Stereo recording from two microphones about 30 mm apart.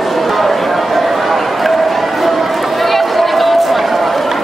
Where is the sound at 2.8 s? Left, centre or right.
Centre.